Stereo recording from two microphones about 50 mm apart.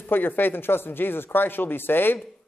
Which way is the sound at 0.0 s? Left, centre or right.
Left.